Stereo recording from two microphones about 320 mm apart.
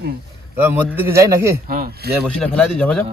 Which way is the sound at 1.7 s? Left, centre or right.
Right.